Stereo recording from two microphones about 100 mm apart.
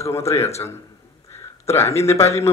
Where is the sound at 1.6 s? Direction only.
30° left (ahead or behind).